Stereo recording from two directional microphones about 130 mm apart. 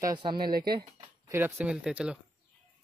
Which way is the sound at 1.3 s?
15° right (ahead or behind).